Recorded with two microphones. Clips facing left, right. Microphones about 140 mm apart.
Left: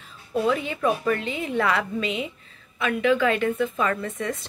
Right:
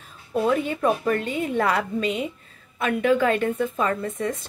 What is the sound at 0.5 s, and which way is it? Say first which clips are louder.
Speech: right 2 dB; 45° right (ahead or behind).